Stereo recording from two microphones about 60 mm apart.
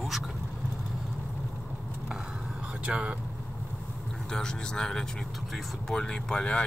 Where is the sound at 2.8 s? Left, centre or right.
Centre.